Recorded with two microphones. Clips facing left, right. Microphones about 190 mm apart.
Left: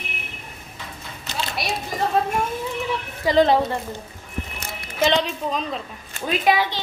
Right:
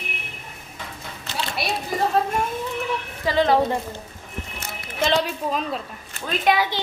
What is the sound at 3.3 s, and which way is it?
Speech, 15° left (ahead or behind).